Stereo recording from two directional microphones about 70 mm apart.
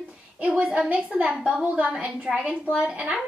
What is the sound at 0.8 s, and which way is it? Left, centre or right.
A woman's voice, right.